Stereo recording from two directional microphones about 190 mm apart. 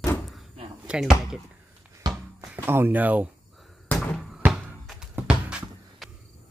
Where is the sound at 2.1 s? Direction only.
20° right (ahead or behind).